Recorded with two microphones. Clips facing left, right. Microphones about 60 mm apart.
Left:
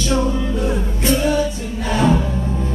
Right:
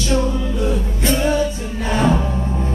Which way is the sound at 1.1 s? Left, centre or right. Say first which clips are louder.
Even; right.